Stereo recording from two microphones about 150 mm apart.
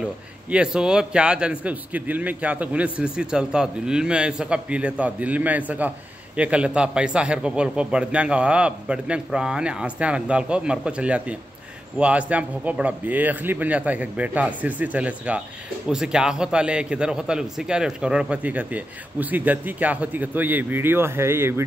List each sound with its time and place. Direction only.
0.5 s a man's voice: 5° right (ahead or behind)